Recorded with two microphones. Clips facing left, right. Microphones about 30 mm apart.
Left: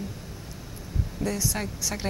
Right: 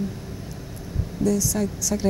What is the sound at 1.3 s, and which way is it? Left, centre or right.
Speech, left.